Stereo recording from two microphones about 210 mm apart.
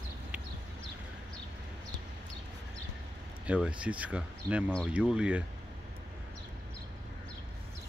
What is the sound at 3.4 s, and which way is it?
Speech, 5° right (ahead or behind).